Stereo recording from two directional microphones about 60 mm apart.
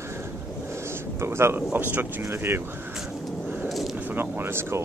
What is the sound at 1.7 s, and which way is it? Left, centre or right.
Speech, right.